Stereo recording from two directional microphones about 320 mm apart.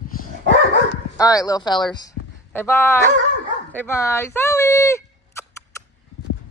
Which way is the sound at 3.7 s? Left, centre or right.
Centre.